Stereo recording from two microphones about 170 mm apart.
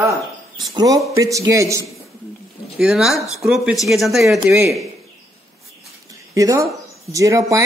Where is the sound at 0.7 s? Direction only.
20° right (ahead or behind).